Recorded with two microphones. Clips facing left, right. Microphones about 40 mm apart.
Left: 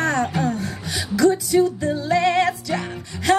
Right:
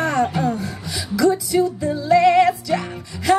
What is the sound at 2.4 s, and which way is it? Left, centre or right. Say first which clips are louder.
Music: right 4 dB; centre.